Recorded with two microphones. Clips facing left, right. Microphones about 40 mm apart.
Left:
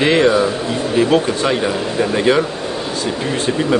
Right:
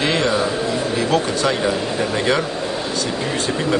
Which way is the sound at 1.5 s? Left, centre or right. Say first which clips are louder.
Left 2 dB; centre.